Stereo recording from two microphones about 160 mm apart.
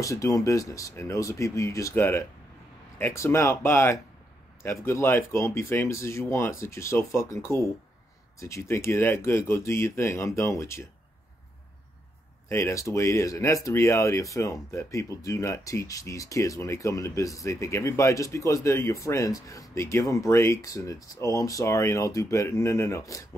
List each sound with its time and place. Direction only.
0.0 s speech: 20° left (ahead or behind)
12.4 s speech: 15° left (ahead or behind)